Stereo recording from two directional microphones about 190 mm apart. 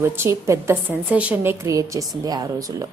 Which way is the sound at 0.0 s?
10° right (ahead or behind).